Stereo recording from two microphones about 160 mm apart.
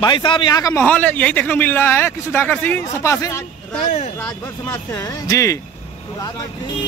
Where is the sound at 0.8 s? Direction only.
10° left (ahead or behind).